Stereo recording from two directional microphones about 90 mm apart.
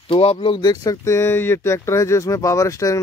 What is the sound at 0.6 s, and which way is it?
Speech, 45° left (ahead or behind).